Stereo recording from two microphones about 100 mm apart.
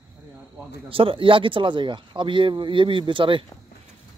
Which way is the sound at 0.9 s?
60° right (ahead or behind).